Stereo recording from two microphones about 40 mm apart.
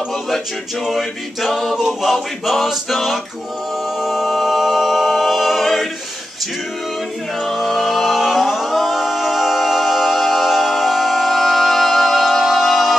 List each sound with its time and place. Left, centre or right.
0.8 s a capella: centre
7.3 s a capella: centre
12.4 s music: centre